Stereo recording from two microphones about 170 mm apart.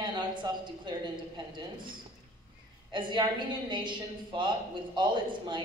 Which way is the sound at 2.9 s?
25° right (ahead or behind).